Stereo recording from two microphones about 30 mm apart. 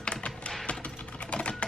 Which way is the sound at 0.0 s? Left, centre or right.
Left.